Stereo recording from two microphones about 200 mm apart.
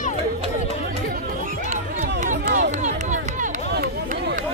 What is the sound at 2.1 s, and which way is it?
Run, 45° right (ahead or behind).